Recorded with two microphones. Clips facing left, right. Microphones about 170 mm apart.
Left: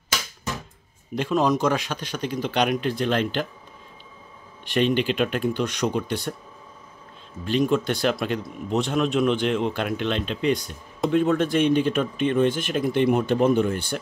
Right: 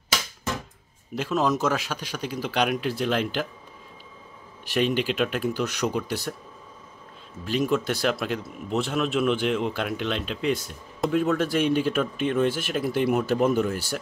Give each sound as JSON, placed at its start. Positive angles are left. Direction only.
{"t": 1.1, "sound": "speech", "side_deg": 0}
{"t": 4.6, "sound": "speech", "side_deg": -5}
{"t": 7.4, "sound": "speech", "side_deg": -5}